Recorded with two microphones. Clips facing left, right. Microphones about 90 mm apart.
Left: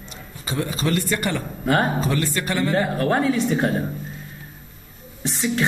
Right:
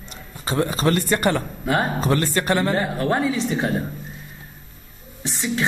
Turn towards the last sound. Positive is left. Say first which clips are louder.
# left 2 dB
turn(degrees=0)  # may be behind; listen again after turning